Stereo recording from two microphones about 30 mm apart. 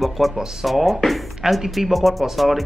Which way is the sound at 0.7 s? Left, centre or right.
Centre.